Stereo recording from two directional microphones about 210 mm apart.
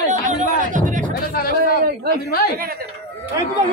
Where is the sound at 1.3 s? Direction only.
45° left (ahead or behind).